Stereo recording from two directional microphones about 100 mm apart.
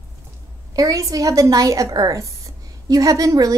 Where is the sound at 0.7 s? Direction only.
35° right (ahead or behind).